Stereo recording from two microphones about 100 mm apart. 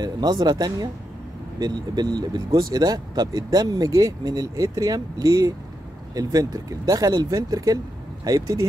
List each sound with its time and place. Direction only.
0.0 s speech: 45° right (ahead or behind)